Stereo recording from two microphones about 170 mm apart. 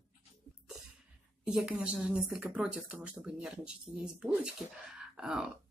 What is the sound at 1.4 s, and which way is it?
Speech, 5° right (ahead or behind).